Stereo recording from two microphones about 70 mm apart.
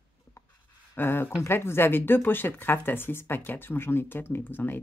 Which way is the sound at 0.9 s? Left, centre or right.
Left.